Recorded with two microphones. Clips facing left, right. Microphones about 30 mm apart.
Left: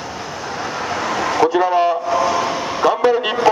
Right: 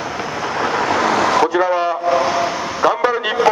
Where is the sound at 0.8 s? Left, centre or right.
Right.